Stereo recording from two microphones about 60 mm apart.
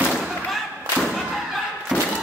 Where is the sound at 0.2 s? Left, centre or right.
Centre.